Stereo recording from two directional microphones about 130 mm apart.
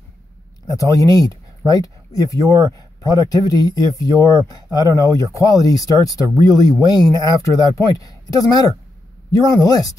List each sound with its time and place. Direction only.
0.7 s speech: 25° left (ahead or behind)